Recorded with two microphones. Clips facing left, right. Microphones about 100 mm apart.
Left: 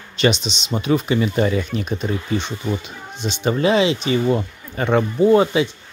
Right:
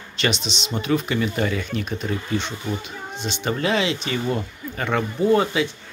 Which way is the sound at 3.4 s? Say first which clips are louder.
Left 6 dB; 20° left (ahead or behind).